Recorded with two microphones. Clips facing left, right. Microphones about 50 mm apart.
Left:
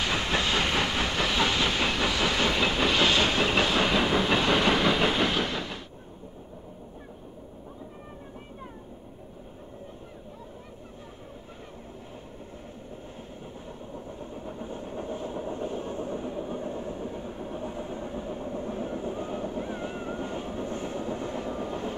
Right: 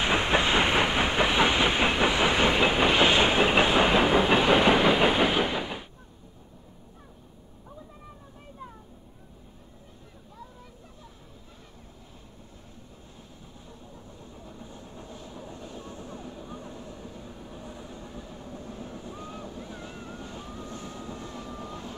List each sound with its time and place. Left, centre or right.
0.0 s train: right
13.9 s vehicle: left